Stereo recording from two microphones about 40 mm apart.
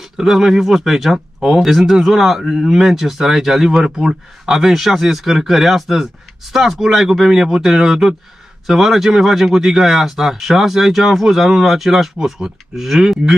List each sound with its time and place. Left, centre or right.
0.2 s speech: centre